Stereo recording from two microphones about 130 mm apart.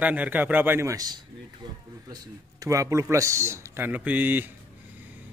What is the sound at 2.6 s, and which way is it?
Speech, 25° right (ahead or behind).